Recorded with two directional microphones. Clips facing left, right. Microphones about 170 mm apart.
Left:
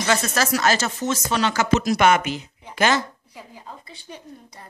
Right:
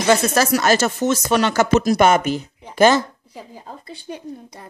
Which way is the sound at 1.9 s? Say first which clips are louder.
Right 3 dB; 40° right (ahead or behind).